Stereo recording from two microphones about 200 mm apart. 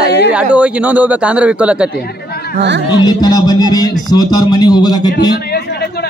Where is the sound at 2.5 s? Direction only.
60° right (ahead or behind).